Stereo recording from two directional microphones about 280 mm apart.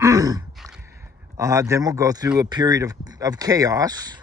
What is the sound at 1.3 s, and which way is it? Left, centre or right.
Speech, centre.